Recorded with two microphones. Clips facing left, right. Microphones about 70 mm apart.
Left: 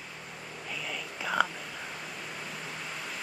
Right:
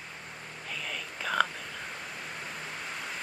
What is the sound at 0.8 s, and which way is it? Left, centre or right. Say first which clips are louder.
Whispering: even; centre.